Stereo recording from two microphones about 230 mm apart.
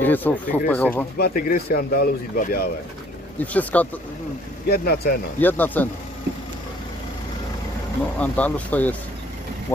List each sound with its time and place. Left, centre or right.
0.0 s speech: centre
1.1 s speech: left
3.5 s speech: centre
4.6 s speech: left
5.4 s speech: centre
8.2 s speech: centre